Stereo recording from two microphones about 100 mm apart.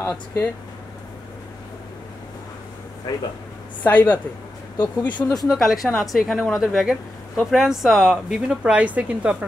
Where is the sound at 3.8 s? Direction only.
15° left (ahead or behind).